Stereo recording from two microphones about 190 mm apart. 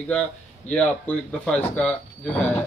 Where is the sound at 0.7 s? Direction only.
5° left (ahead or behind).